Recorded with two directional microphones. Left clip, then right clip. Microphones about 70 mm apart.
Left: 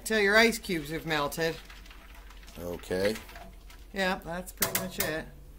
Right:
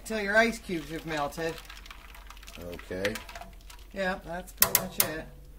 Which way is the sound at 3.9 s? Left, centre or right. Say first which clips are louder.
Left 1 dB; left.